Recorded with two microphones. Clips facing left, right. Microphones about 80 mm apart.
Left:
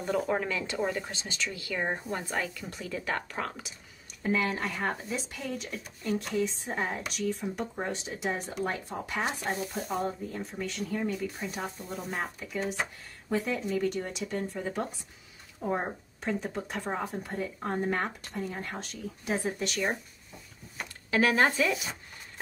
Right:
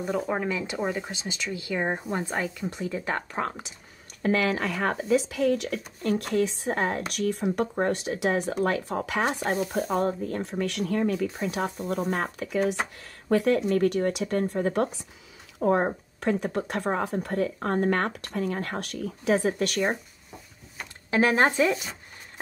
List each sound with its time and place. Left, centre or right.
0.0 s speech: centre; by 3.7 s right
4.2 s speech: right
7.1 s speech: right
11.3 s speech: right
15.6 s speech: right
21.1 s speech: right